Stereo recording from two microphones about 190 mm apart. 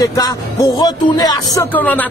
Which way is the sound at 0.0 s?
20° left (ahead or behind).